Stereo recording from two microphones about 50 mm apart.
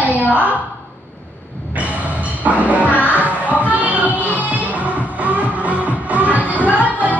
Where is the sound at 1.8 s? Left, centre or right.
Right.